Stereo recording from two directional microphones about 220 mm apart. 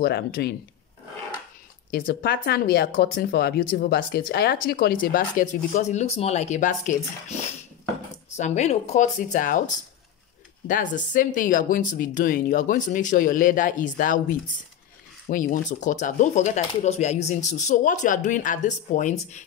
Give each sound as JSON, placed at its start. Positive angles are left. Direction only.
{"t": 0.0, "sound": "speech", "side_deg": 45}
{"t": 1.9, "sound": "speech", "side_deg": 45}
{"t": 8.4, "sound": "speech", "side_deg": 30}
{"t": 15.2, "sound": "speech", "side_deg": 35}